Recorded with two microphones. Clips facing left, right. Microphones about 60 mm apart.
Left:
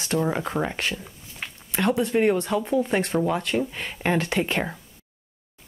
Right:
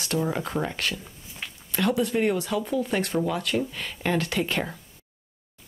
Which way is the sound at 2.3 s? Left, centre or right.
Centre.